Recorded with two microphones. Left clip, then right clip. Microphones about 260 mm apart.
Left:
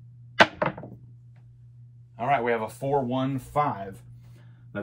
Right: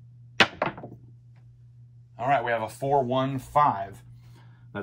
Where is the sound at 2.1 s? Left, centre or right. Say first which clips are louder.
Even; centre.